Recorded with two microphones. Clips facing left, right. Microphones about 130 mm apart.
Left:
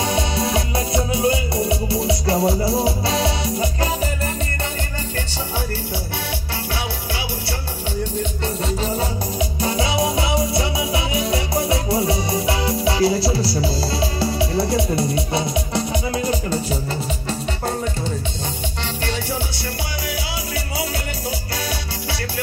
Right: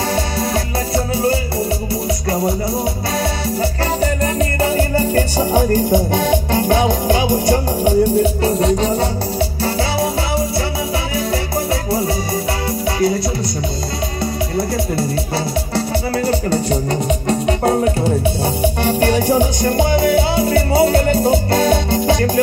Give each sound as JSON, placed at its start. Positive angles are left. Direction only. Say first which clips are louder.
{"t": 2.0, "sound": "music", "louder": "even", "side_deg": 25}
{"t": 4.7, "sound": "music", "louder": "right 12 dB", "side_deg": -40}
{"t": 5.9, "sound": "music", "louder": "right 13 dB", "side_deg": -50}
{"t": 7.2, "sound": "music", "louder": "right 13 dB", "side_deg": -15}
{"t": 9.6, "sound": "music", "louder": "even", "side_deg": 20}
{"t": 12.8, "sound": "music", "louder": "right 1 dB", "side_deg": 30}
{"t": 16.2, "sound": "music", "louder": "right 5 dB", "side_deg": -65}